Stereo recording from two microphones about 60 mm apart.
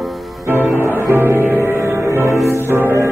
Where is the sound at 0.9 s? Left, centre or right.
Right.